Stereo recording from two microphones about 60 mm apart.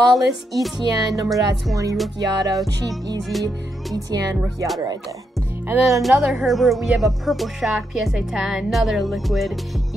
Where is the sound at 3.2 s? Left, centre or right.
Centre.